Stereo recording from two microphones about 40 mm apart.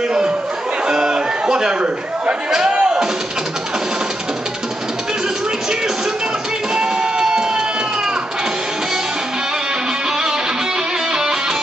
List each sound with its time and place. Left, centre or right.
0.8 s a sound: right
2.7 s music: right
6.7 s music: centre